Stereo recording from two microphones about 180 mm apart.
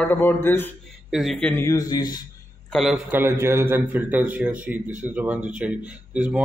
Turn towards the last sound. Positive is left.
turn(degrees=-5)  # may be behind; listen again after turning